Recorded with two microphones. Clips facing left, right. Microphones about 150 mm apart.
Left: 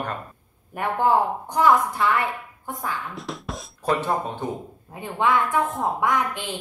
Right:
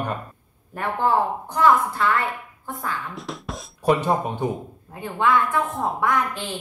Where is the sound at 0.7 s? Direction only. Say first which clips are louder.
Left 1 dB; 15° left (ahead or behind).